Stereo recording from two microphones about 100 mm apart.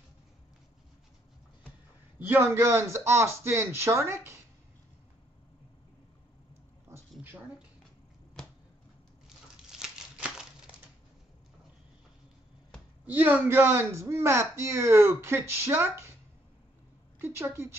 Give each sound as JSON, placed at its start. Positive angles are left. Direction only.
{"t": 2.1, "sound": "a man's voice", "side_deg": -20}
{"t": 9.7, "sound": "crumpling", "side_deg": -5}
{"t": 13.0, "sound": "a man's voice", "side_deg": -15}
{"t": 17.2, "sound": "a man's voice", "side_deg": -25}